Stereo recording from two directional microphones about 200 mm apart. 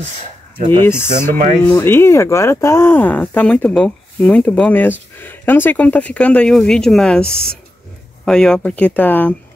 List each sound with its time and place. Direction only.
1.0 s speech: 10° left (ahead or behind)